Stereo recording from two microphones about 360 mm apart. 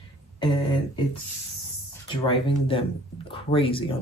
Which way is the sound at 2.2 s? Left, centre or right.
Centre.